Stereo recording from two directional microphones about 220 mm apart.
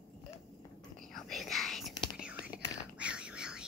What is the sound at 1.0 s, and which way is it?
Whispering, centre (ahead or behind).